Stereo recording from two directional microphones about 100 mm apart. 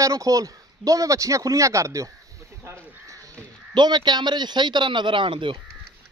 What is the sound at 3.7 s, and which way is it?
A man's voice, 45° right (ahead or behind).